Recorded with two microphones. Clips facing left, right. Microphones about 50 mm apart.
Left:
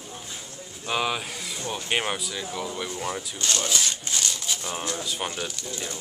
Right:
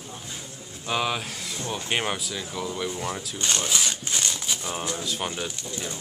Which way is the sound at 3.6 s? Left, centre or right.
Centre.